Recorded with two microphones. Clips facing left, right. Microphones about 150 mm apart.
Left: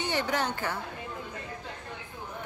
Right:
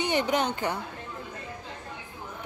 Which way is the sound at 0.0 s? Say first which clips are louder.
Right 4 dB; 20° right (ahead or behind).